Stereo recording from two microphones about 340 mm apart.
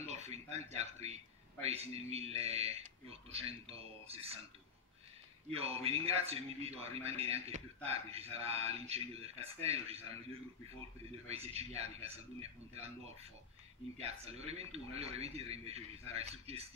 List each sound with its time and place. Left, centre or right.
0.0 s a man's voice: centre
5.5 s a man's voice: centre
11.2 s a man's voice: centre